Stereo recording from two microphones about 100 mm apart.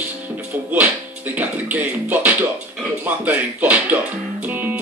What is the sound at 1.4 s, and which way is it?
Music, 15° right (ahead or behind).